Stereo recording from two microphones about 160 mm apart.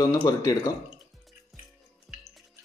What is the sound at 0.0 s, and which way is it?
Speech, 20° left (ahead or behind).